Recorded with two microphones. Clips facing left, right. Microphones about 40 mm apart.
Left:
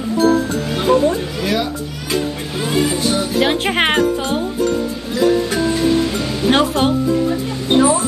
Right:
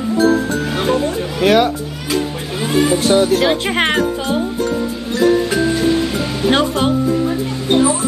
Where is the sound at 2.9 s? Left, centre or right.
Right.